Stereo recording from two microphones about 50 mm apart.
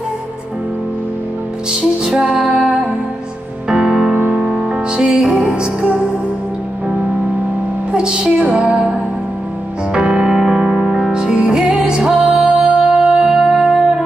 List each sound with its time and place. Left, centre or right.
1.7 s music: centre
3.6 s music: centre
7.9 s music: centre
9.9 s music: centre